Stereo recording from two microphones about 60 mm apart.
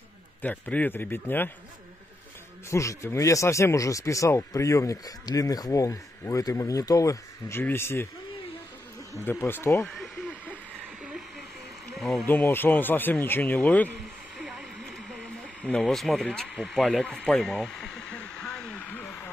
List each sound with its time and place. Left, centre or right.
0.4 s speech: left
2.7 s speech: left
7.6 s speech: left
9.5 s speech: left
11.9 s speech: centre
12.3 s speech: left
13.9 s a sound: centre
15.8 s speech: centre
18.1 s a sound: left
18.4 s radio: centre